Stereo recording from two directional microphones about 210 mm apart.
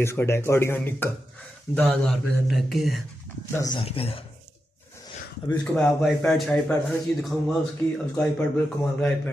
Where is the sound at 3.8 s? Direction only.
25° left (ahead or behind).